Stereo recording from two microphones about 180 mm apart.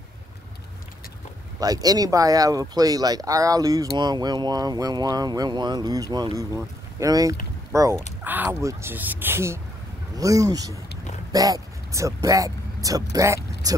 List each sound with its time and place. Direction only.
1.6 s speech: 20° right (ahead or behind)